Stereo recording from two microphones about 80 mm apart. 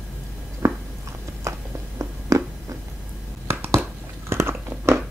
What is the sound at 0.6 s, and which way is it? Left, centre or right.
Biting, right.